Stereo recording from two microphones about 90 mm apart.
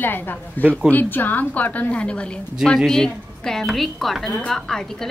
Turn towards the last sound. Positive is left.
turn(degrees=5)  # may be behind; listen again after turning